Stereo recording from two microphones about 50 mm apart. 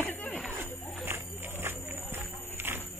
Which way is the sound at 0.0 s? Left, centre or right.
Left.